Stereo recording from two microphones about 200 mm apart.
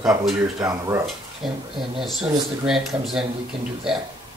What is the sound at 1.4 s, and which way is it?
Speech, centre (ahead or behind).